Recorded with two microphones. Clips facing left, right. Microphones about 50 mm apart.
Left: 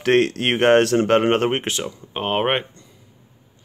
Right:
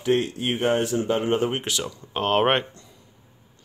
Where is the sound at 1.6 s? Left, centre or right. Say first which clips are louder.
Left 3 dB; left.